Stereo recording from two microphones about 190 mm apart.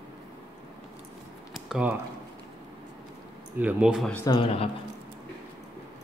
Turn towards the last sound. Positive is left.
turn(degrees=30)  # may be behind; listen again after turning